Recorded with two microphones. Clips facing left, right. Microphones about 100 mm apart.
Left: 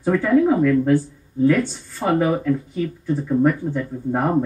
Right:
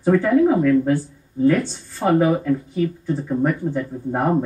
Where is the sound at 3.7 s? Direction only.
10° right (ahead or behind).